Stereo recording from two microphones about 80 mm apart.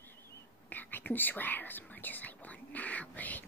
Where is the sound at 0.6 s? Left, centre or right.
Left.